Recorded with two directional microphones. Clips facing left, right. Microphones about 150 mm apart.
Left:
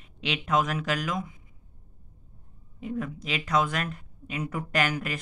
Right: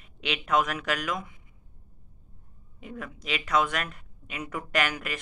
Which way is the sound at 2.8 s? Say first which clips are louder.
Left 7 dB; 30° left (ahead or behind).